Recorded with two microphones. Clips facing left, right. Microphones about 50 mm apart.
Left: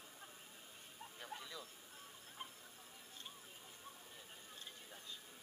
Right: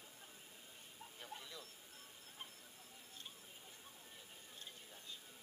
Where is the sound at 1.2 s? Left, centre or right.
Centre.